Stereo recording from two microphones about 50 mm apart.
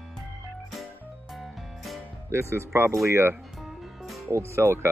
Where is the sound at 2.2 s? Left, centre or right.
Right.